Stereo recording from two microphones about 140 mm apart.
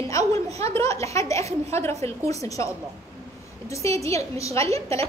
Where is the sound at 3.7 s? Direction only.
20° left (ahead or behind).